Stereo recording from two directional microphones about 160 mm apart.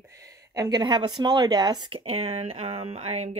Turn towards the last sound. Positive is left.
turn(degrees=-40)  # may be behind; listen again after turning